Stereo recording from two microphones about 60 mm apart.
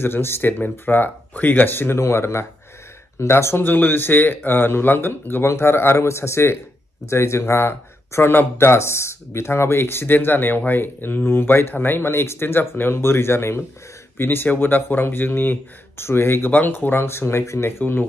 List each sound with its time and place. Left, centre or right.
0.0 s speech: left
3.6 s speech: left